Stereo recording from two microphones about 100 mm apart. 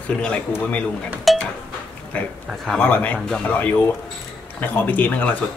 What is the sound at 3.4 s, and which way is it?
Speech, 15° left (ahead or behind).